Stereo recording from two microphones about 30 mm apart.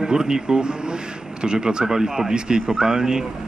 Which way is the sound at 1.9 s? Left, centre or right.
Centre.